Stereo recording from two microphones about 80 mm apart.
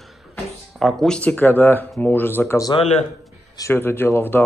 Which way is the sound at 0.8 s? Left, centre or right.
Centre.